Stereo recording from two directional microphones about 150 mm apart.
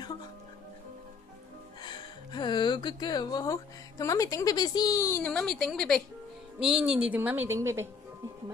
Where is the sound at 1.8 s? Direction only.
30° left (ahead or behind); by 7.8 s 15° right (ahead or behind).